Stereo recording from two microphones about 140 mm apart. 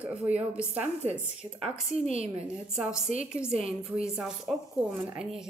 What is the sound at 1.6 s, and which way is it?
Speech, 45° right (ahead or behind).